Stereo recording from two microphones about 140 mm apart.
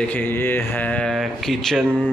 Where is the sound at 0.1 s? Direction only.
15° left (ahead or behind).